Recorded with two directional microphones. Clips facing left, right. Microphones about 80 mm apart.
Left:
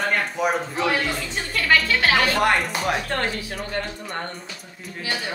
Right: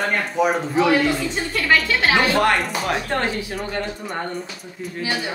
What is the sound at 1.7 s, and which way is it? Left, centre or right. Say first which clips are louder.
Speech: right 1 dB; right.